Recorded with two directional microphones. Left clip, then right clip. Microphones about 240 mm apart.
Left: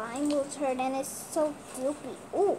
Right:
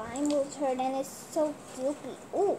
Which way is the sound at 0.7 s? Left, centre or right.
Centre.